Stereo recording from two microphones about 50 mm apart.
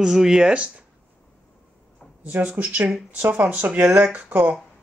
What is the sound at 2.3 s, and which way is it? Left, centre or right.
Speech, right.